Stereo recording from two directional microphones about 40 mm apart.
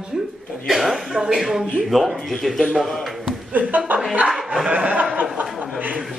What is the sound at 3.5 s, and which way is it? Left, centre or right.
Speech, right.